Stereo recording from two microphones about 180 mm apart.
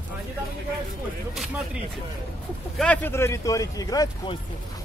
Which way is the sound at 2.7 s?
10° left (ahead or behind).